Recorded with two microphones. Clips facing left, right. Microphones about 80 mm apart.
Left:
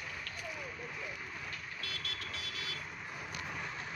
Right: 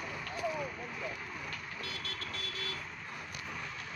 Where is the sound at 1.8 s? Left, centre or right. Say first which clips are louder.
Right 1 dB; right.